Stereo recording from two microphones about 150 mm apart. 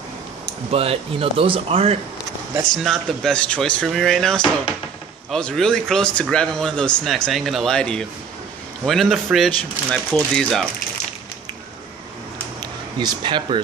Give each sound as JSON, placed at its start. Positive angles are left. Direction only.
{"t": 0.7, "sound": "speech", "side_deg": -40}
{"t": 2.7, "sound": "speech", "side_deg": 0}
{"t": 13.0, "sound": "speech", "side_deg": -30}